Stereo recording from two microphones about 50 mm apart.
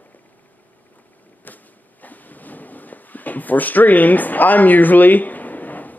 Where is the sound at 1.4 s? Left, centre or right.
Left.